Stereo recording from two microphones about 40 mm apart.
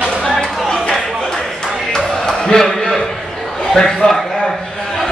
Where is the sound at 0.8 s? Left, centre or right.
Centre.